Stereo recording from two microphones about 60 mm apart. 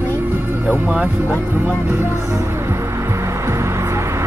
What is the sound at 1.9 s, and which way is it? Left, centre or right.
Speech, right.